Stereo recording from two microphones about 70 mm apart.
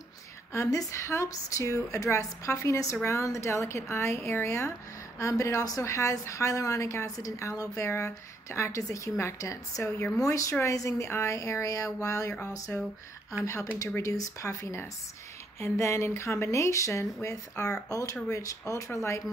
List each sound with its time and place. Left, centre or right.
0.7 s a woman's voice: left
14.5 s a woman's voice: left